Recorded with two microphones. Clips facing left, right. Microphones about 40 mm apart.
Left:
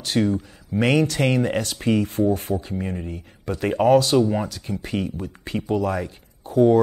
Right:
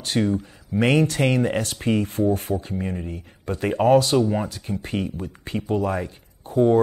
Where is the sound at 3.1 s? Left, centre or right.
Right.